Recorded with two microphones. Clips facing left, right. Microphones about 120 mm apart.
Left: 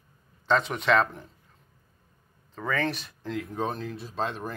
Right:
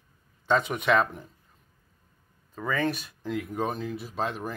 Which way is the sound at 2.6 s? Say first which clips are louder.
Right 1 dB; 10° right (ahead or behind).